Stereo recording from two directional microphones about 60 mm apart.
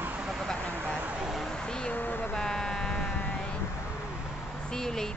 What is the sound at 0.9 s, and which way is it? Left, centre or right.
Speech, right.